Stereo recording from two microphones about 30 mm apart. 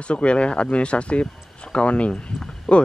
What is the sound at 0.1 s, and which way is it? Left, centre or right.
Speech, left.